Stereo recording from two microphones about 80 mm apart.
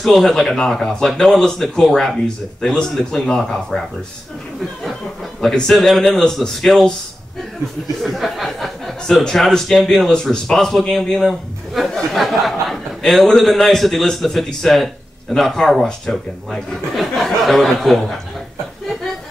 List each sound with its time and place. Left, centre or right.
0.0 s speech: centre
5.4 s speech: centre
8.0 s speech: centre